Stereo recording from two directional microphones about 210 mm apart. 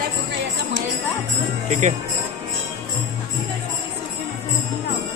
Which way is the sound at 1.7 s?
35° right (ahead or behind).